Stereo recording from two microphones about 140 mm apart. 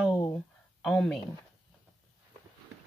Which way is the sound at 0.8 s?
5° left (ahead or behind).